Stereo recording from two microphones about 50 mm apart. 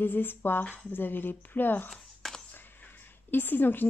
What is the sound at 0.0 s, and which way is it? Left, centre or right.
A woman's voice, left.